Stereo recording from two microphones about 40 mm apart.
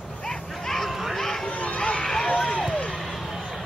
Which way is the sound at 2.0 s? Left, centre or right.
Centre.